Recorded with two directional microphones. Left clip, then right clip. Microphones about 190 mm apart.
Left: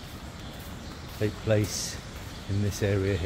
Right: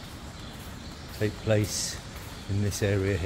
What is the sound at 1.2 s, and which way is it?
Speech, 10° right (ahead or behind).